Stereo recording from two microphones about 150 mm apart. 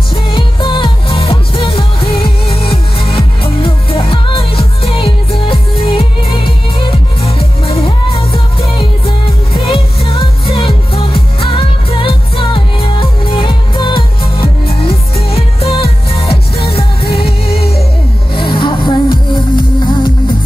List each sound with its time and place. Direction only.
0.1 s music: 35° left (ahead or behind)
18.3 s music: 35° left (ahead or behind)